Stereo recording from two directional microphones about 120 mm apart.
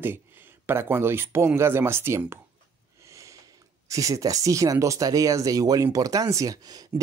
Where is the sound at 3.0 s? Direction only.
25° right (ahead or behind).